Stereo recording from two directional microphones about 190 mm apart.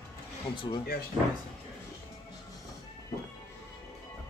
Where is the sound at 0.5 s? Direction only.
25° left (ahead or behind).